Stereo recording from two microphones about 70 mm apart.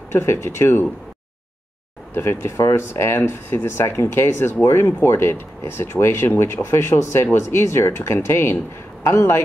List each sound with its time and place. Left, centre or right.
0.1 s speech: left
2.1 s speech: left